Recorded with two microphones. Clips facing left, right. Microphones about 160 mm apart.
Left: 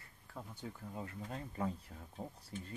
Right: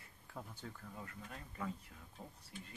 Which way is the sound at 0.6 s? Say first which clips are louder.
Left 5 dB; 25° left (ahead or behind).